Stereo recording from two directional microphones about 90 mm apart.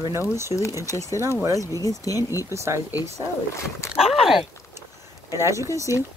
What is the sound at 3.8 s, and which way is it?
Speech, 30° left (ahead or behind).